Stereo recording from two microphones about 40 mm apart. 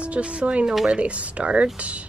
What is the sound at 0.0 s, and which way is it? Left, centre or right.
Speech, right.